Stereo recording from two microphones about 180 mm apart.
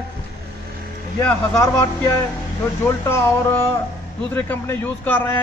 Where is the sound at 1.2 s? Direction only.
10° left (ahead or behind).